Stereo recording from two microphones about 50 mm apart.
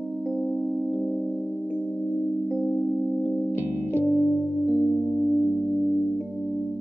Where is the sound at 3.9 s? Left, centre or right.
Right.